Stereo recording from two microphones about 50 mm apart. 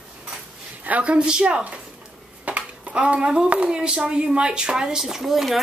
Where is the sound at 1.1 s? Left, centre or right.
Centre.